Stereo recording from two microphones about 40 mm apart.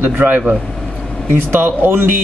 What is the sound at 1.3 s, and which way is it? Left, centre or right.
Speech, right.